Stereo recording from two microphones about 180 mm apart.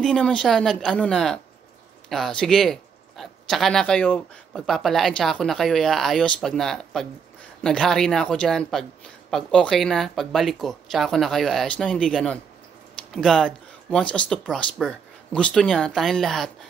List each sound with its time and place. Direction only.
0.0 s speech: 5° left (ahead or behind)